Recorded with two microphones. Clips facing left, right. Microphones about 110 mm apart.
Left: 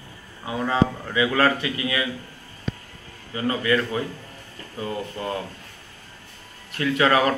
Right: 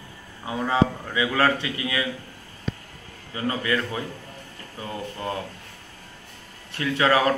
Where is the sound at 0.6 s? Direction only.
20° right (ahead or behind).